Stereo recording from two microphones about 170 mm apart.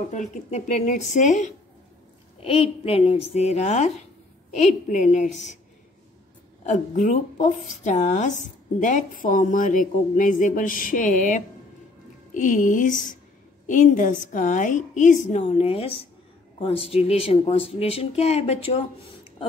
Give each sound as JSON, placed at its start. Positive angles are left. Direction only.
{"t": 0.1, "sound": "a woman's voice", "side_deg": 45}
{"t": 2.4, "sound": "a woman's voice", "side_deg": 35}
{"t": 6.6, "sound": "a woman's voice", "side_deg": 45}